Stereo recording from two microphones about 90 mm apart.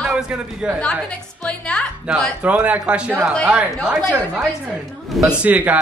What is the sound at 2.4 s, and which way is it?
Speech, 15° right (ahead or behind).